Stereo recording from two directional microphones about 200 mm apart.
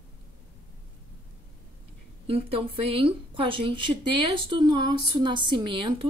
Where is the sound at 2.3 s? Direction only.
30° right (ahead or behind).